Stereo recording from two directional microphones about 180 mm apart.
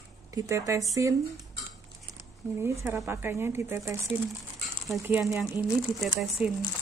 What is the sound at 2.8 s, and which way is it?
Speech, 15° right (ahead or behind).